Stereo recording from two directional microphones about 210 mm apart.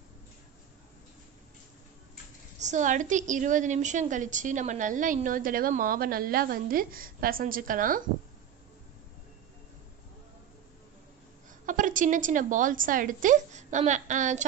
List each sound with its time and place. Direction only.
2.6 s a woman's voice: 35° right (ahead or behind)
11.6 s a woman's voice: 40° right (ahead or behind)